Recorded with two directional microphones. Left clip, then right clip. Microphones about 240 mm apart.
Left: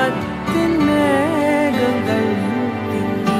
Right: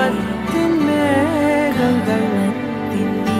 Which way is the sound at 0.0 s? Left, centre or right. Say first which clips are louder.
Even; centre.